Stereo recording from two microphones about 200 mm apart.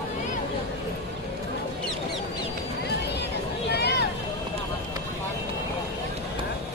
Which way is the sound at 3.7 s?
55° left (ahead or behind).